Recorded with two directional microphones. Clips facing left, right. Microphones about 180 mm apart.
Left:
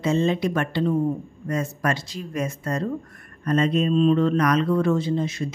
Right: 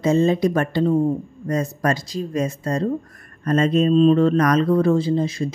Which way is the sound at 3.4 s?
45° right (ahead or behind).